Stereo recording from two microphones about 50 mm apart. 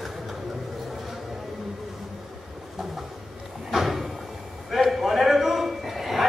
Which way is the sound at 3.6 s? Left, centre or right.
Centre.